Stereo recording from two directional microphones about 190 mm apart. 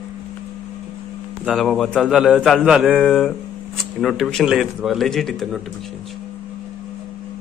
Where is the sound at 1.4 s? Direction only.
Centre (ahead or behind).